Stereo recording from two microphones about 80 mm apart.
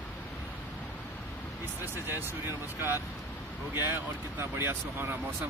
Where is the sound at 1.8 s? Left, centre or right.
Right.